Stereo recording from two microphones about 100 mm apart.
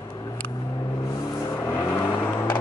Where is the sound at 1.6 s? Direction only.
25° left (ahead or behind).